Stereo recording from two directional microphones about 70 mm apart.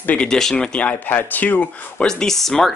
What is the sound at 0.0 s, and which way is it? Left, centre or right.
Speech, left.